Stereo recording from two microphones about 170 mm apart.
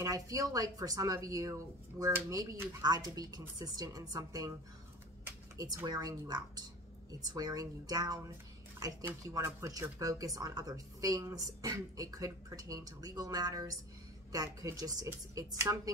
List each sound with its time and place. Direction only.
0.0 s speech: 20° right (ahead or behind)